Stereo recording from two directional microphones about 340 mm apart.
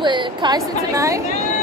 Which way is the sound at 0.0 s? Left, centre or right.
Centre.